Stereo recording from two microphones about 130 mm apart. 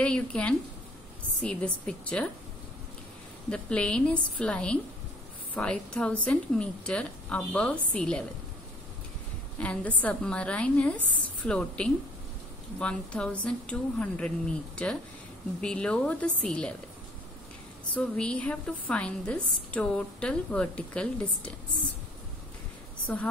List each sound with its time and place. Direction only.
0.0 s a woman's voice: 10° left (ahead or behind)
3.4 s a woman's voice: 10° left (ahead or behind)
9.6 s a woman's voice: 10° left (ahead or behind)
17.9 s a woman's voice: 10° left (ahead or behind)
23.0 s a woman's voice: 10° left (ahead or behind)